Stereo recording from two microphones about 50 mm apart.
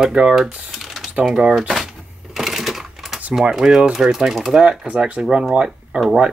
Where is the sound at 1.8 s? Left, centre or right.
Centre.